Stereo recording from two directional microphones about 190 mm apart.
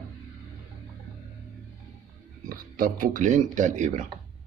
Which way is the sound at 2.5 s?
45° right (ahead or behind).